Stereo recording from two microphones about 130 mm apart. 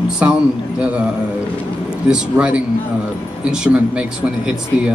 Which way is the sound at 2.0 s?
5° right (ahead or behind).